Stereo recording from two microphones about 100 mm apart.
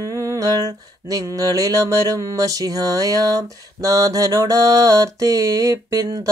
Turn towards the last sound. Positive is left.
turn(degrees=-35)  # may be behind; listen again after turning